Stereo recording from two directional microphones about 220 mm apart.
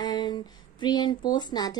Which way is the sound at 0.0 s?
20° left (ahead or behind).